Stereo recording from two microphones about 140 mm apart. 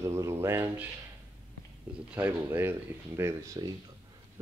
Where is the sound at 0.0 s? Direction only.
20° right (ahead or behind).